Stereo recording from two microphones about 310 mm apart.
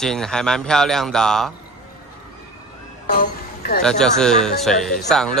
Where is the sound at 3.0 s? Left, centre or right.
Left.